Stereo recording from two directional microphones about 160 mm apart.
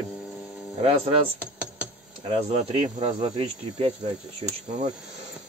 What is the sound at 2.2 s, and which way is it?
Speech, 35° right (ahead or behind).